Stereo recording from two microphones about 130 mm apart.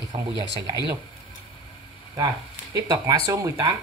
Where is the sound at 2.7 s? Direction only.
30° right (ahead or behind).